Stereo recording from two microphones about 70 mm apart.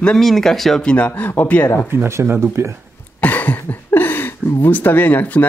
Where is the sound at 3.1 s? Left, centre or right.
Left.